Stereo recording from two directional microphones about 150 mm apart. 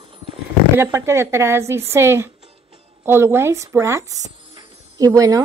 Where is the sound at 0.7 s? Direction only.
15° right (ahead or behind).